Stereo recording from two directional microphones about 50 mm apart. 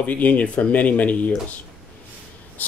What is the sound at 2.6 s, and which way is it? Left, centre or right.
Speech, left.